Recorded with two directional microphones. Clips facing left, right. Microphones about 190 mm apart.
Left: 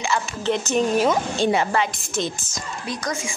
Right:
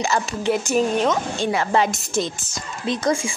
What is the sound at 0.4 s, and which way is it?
Speech, 10° right (ahead or behind).